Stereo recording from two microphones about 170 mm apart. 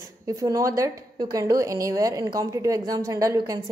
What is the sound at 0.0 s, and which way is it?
A woman's voice, 20° right (ahead or behind).